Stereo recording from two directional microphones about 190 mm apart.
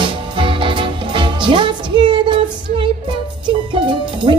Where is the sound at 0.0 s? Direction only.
25° right (ahead or behind).